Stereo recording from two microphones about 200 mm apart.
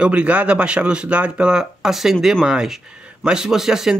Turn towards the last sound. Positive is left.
turn(degrees=0)  # may be behind; listen again after turning